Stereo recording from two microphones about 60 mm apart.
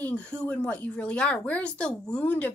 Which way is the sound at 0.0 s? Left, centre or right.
Left.